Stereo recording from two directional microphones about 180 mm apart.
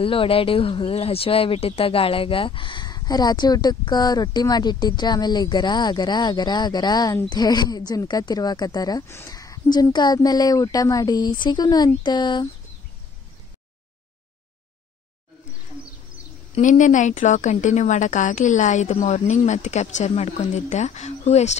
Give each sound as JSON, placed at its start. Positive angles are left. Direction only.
{"t": 0.0, "sound": "speech", "side_deg": 30}
{"t": 16.5, "sound": "speech", "side_deg": 45}